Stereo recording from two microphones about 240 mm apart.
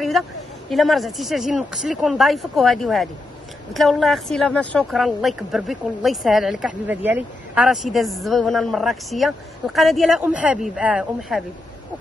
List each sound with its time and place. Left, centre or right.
0.7 s speech: centre